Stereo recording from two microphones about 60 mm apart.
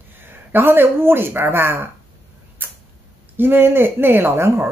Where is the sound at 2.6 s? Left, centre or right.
Right.